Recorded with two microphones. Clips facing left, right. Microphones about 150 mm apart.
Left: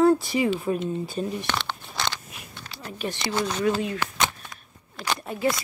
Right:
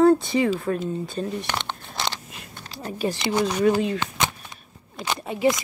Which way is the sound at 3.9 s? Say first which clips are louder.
Even; 20° right (ahead or behind).